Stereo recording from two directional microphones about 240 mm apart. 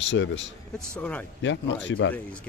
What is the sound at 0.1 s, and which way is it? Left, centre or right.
Speech, left.